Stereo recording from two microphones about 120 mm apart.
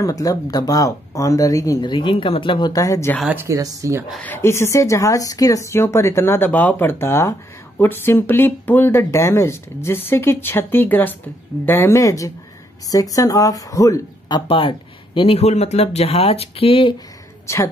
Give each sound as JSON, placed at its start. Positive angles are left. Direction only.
{"t": 0.0, "sound": "speech", "side_deg": 30}
{"t": 1.9, "sound": "speech", "side_deg": 45}
{"t": 2.7, "sound": "speech", "side_deg": 30}
{"t": 3.4, "sound": "speech", "side_deg": -25}
{"t": 4.2, "sound": "speech", "side_deg": 20}
{"t": 14.5, "sound": "speech", "side_deg": 45}
{"t": 17.5, "sound": "speech", "side_deg": 25}